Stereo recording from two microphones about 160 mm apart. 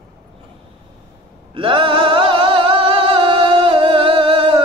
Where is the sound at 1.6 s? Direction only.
35° right (ahead or behind).